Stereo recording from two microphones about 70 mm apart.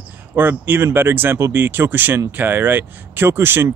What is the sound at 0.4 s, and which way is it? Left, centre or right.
Speech, right.